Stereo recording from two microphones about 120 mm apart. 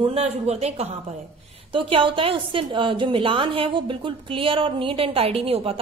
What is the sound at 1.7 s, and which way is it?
A woman's voice, 45° right (ahead or behind).